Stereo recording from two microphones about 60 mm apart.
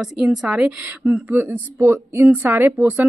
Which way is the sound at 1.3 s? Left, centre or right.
Right.